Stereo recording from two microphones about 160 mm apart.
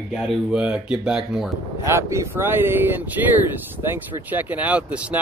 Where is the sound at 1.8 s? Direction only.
15° right (ahead or behind).